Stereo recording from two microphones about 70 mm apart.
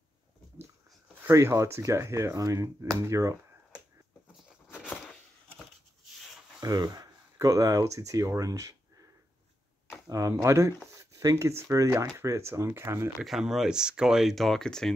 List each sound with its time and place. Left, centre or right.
1.3 s speech: right
6.6 s speech: right
7.3 s speech: right
10.4 s speech: right
13.2 s speech: centre